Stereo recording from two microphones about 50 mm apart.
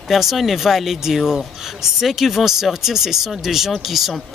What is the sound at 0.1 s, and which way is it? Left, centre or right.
Speech, centre.